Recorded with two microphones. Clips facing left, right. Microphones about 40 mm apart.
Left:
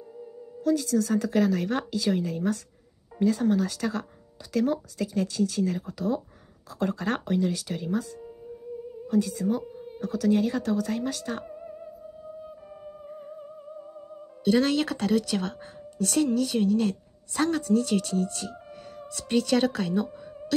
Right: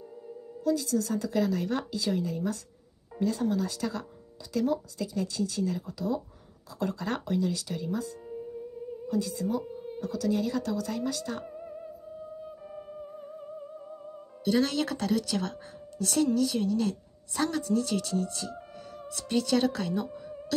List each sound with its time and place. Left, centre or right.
0.7 s speech: left
8.3 s music: centre
9.1 s speech: left
11.4 s music: centre
14.4 s speech: left